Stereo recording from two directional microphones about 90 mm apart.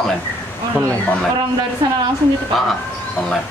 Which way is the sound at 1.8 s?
50° right (ahead or behind).